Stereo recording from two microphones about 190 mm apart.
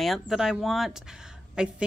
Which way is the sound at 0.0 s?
Centre (ahead or behind).